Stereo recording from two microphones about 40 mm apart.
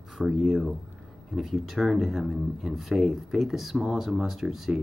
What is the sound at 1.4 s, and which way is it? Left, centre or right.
Speech, centre.